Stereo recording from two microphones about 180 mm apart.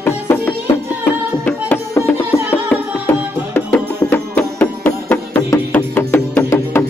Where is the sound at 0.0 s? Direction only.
10° left (ahead or behind).